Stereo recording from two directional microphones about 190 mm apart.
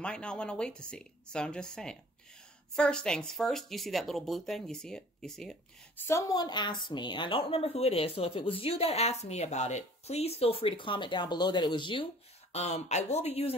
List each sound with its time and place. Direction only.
0.0 s speech: 5° left (ahead or behind)
6.0 s a woman's voice: 15° left (ahead or behind)
12.5 s speech: 35° left (ahead or behind)